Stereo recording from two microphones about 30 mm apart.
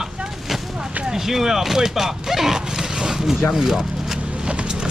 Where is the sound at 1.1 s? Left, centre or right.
Centre.